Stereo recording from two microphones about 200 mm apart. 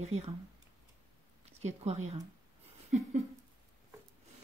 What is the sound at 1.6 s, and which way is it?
Speech, 35° right (ahead or behind).